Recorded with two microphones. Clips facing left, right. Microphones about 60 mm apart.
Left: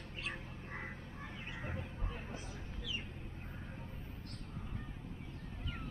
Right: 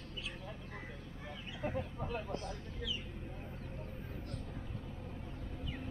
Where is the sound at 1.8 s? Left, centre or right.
Right.